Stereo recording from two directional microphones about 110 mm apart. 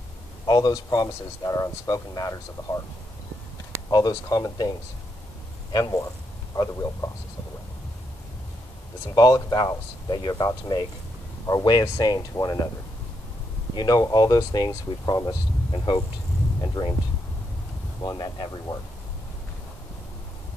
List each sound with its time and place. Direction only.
0.5 s speech: 40° left (ahead or behind)
3.9 s speech: 35° left (ahead or behind)
9.1 s speech: 35° left (ahead or behind)
13.7 s speech: 35° left (ahead or behind)
18.0 s speech: 40° left (ahead or behind)